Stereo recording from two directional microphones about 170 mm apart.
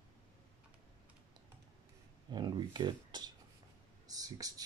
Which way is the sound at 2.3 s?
25° right (ahead or behind).